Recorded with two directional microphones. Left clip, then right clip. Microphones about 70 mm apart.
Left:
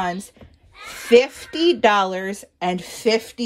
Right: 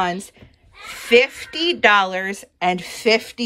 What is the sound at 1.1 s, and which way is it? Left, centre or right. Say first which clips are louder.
Speech: even; left.